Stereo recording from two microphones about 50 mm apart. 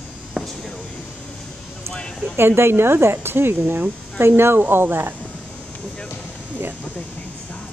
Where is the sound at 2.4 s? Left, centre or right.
Right.